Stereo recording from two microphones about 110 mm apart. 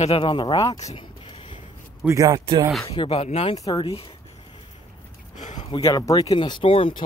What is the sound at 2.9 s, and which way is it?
Speech, 50° left (ahead or behind).